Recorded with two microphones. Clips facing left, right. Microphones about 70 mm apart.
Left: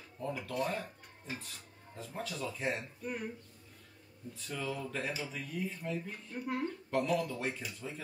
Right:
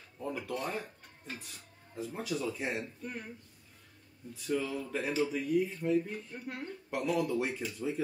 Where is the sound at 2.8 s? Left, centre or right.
Centre.